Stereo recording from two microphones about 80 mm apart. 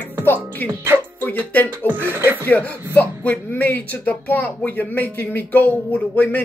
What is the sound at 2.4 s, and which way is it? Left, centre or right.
Speech, left.